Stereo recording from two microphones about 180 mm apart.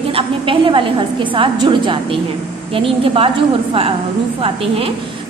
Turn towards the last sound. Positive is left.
turn(degrees=-30)  # may be behind; listen again after turning